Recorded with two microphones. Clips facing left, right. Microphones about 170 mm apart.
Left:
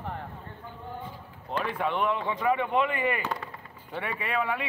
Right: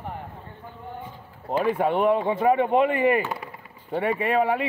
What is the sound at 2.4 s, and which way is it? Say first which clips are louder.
A man's voice: right 5 dB; 35° right (ahead or behind).